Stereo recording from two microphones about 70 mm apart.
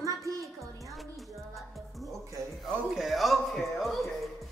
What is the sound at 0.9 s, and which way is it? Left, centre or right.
Music, centre.